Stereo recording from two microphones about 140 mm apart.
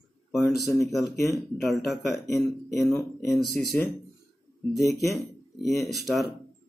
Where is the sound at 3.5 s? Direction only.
15° left (ahead or behind).